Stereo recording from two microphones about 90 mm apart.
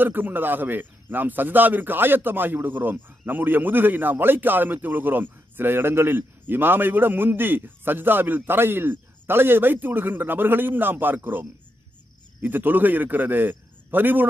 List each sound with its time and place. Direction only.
0.0 s a man's voice: 20° right (ahead or behind)